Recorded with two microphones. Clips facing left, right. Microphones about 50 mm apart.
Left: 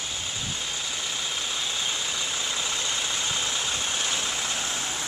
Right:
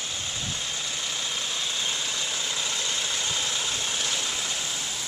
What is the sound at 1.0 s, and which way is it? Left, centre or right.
Vehicle, centre.